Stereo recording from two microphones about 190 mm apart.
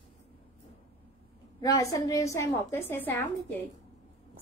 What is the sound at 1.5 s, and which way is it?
A woman's voice, 20° left (ahead or behind).